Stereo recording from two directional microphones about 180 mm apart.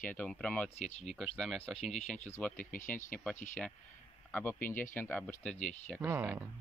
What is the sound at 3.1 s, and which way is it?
Speech, 10° left (ahead or behind).